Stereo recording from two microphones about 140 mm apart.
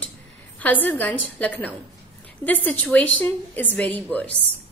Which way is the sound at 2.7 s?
10° left (ahead or behind).